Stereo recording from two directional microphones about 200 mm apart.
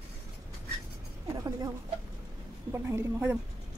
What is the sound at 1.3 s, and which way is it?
Speech, 20° right (ahead or behind).